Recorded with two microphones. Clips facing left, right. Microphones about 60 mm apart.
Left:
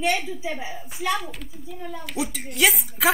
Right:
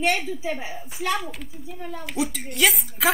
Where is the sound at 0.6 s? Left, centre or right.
Right.